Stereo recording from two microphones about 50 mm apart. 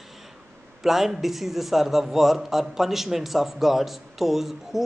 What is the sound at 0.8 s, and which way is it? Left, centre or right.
A man's voice, centre.